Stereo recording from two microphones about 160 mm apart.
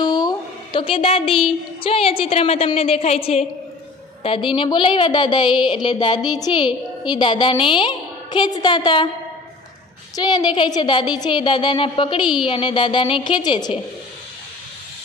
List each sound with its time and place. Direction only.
0.0 s a woman's voice: 25° left (ahead or behind)
10.1 s speech: 25° left (ahead or behind)